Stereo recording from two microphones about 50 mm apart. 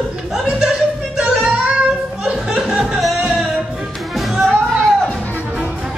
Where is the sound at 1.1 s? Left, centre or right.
Centre.